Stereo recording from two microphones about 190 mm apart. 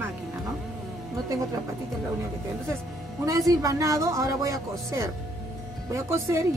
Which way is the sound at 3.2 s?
15° right (ahead or behind).